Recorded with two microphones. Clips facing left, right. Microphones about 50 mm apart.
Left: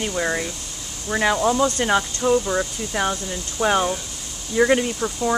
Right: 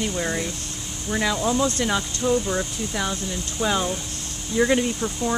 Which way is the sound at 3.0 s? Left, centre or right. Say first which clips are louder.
Left 5 dB; left.